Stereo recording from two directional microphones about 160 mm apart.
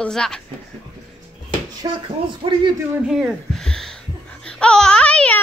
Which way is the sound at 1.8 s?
25° right (ahead or behind).